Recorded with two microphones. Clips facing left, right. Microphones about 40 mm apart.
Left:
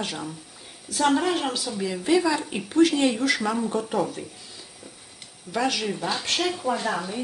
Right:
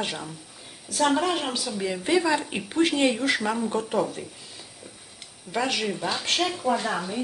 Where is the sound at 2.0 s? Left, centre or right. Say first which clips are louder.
Left 1 dB; right.